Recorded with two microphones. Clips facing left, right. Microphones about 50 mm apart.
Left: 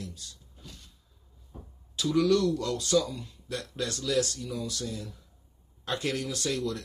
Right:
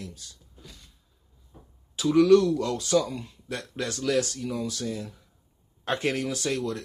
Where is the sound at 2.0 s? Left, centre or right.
Right.